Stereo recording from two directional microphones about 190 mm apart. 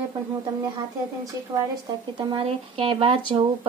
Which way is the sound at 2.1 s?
30° right (ahead or behind).